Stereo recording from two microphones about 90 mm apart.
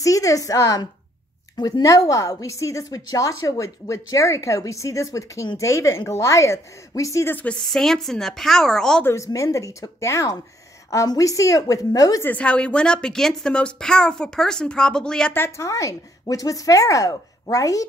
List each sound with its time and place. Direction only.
0.0 s a woman's voice: 40° left (ahead or behind)
7.3 s a woman's voice: 10° left (ahead or behind)
9.0 s a woman's voice: 35° left (ahead or behind)
12.2 s a woman's voice: 15° left (ahead or behind)
15.3 s a woman's voice: 25° left (ahead or behind)
15.6 s a woman's voice: 40° left (ahead or behind)